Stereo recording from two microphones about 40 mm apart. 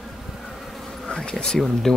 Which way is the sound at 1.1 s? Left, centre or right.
Left.